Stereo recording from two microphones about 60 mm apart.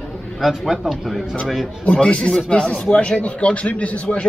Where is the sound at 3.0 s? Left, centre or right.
Centre.